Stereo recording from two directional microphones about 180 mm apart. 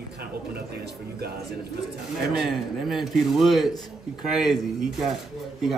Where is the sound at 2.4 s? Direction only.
Centre (ahead or behind).